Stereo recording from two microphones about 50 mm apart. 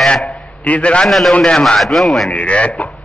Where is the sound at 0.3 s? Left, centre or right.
Left.